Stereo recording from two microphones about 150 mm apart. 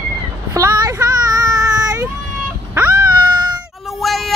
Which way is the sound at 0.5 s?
25° right (ahead or behind).